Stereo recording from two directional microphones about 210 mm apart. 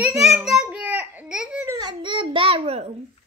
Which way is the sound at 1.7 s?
20° right (ahead or behind).